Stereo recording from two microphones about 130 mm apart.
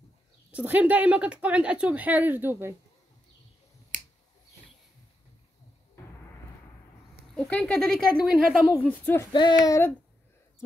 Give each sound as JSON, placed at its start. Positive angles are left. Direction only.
{"t": 0.5, "sound": "speech", "side_deg": -10}
{"t": 3.9, "sound": "finger snapping", "side_deg": -90}
{"t": 7.3, "sound": "speech", "side_deg": 5}
{"t": 9.3, "sound": "child singing", "side_deg": 35}
{"t": 9.7, "sound": "speech", "side_deg": 20}